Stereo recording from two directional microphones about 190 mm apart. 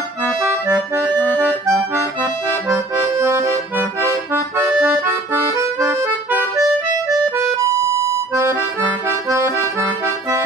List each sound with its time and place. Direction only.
0.2 s accordion: 10° right (ahead or behind)
4.3 s music: 10° right (ahead or behind)
9.3 s accordion: 15° right (ahead or behind)